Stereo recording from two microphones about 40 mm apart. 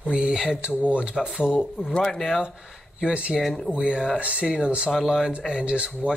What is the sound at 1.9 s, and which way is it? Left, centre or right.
Speech, centre.